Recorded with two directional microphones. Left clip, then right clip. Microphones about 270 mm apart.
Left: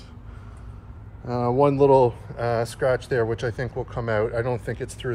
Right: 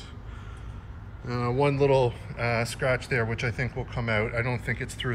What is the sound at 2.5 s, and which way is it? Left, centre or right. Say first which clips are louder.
Speech: left 4 dB; left.